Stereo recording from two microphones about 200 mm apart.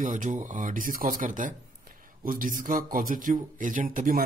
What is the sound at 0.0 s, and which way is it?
A man's voice, 40° right (ahead or behind).